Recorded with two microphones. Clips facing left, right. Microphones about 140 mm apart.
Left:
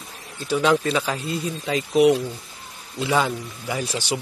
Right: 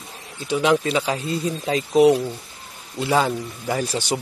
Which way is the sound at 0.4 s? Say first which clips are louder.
Right 1 dB; 20° right (ahead or behind).